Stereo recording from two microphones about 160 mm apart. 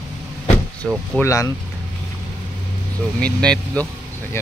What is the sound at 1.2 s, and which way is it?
Speech, 20° left (ahead or behind).